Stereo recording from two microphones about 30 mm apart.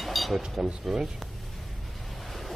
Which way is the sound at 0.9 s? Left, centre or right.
Centre.